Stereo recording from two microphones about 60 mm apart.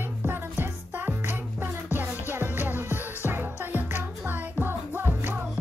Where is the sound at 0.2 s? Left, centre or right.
Right.